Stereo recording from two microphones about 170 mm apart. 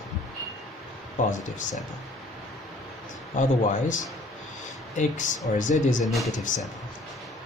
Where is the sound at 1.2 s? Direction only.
50° left (ahead or behind).